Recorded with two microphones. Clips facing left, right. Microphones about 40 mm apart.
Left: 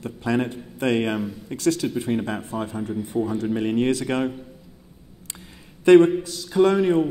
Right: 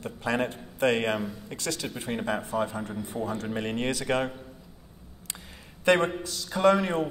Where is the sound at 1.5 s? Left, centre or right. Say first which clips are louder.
Left 13 dB; right.